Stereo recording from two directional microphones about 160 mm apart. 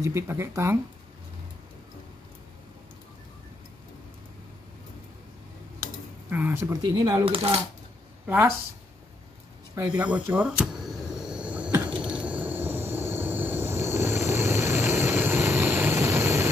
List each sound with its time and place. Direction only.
0.0 s speech: 20° right (ahead or behind)
6.3 s speech: 15° right (ahead or behind)
7.2 s coin: 35° right (ahead or behind)
8.3 s speech: 10° right (ahead or behind)
9.8 s a sound: 10° right (ahead or behind)
12.0 s train: 5° right (ahead or behind)